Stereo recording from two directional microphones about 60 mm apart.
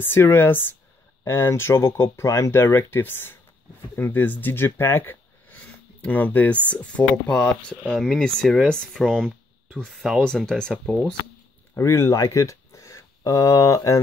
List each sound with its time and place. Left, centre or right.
0.0 s speech: left
2.5 s speech: left; by 9.0 s centre
9.1 s a sound: centre
9.9 s speech: centre
10.2 s speech: centre
11.7 s speech: left
12.2 s speech: left